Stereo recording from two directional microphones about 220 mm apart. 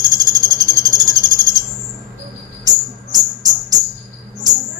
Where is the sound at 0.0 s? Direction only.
15° right (ahead or behind).